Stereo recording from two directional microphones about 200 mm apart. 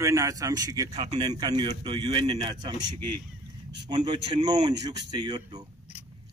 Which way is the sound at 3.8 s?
20° right (ahead or behind).